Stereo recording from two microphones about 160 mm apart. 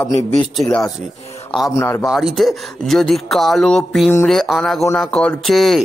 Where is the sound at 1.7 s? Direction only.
15° left (ahead or behind).